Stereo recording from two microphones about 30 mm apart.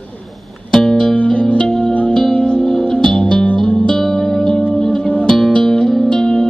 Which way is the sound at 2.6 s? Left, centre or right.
Left.